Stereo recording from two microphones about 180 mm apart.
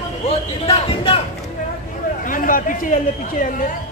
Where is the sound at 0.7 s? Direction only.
35° left (ahead or behind).